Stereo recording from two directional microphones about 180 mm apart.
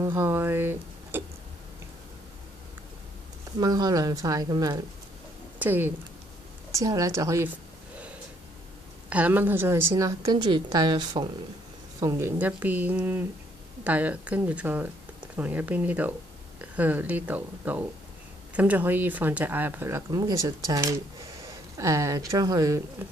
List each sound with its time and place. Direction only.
0.0 s speech: 15° right (ahead or behind)
3.5 s a woman's voice: 20° right (ahead or behind)
9.1 s a woman's voice: 10° right (ahead or behind)